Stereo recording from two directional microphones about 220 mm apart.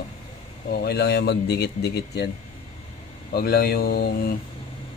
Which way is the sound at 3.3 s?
45° left (ahead or behind).